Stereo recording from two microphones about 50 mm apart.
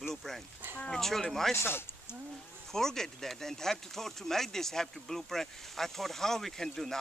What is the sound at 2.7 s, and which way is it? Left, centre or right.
Speech, centre.